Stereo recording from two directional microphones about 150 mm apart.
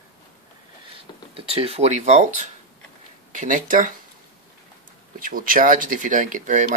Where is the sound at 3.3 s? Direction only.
60° right (ahead or behind).